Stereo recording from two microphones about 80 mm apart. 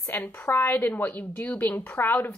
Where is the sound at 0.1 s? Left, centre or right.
Left.